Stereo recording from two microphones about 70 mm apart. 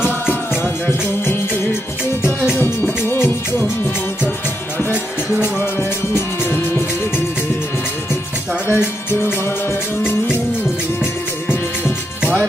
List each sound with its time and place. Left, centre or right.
0.8 s music: left
8.6 s music: left